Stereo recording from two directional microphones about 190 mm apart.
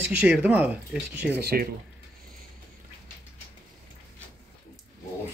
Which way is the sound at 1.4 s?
55° right (ahead or behind).